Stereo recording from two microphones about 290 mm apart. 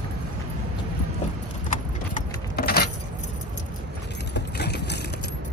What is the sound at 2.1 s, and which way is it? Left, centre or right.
Vehicle, left.